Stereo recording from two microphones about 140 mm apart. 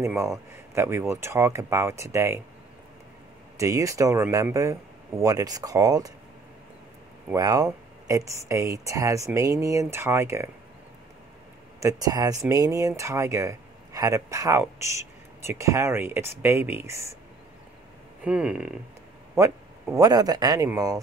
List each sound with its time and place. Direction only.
0.0 s speech: 20° right (ahead or behind)
3.5 s speech: 20° right (ahead or behind)
7.3 s speech: 25° right (ahead or behind)
11.8 s speech: 25° right (ahead or behind)
18.2 s speech: 5° right (ahead or behind)
19.3 s speech: 20° right (ahead or behind)